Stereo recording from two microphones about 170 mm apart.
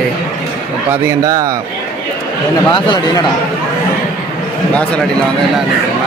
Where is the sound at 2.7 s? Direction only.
25° left (ahead or behind).